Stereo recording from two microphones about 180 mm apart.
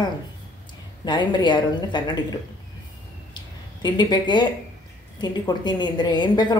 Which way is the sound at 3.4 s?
25° left (ahead or behind).